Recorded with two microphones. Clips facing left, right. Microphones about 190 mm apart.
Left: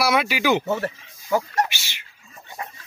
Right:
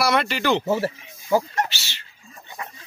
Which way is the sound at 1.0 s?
25° right (ahead or behind).